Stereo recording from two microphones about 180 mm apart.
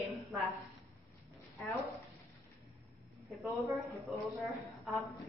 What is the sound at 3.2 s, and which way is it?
A woman's voice, centre (ahead or behind).